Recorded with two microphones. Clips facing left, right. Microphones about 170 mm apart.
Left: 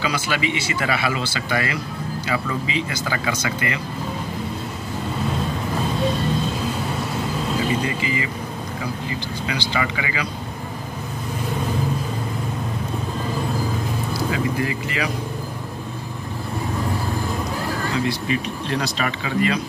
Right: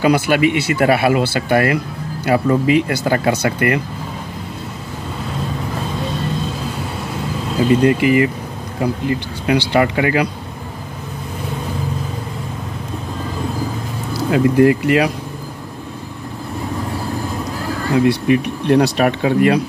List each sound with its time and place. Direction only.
0.0 s speech: 55° right (ahead or behind)
7.8 s speech: 65° right (ahead or behind)
14.3 s speech: 70° right (ahead or behind)
17.9 s speech: 65° right (ahead or behind)